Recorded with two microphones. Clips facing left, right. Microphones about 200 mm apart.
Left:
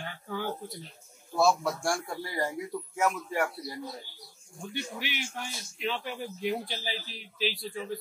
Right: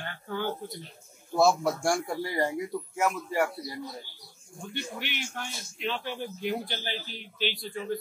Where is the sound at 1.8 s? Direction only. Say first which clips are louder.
Right 4 dB; 20° right (ahead or behind).